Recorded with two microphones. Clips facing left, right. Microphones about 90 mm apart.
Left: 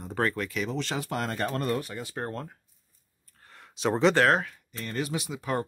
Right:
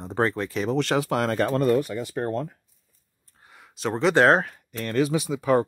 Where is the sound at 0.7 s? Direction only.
80° right.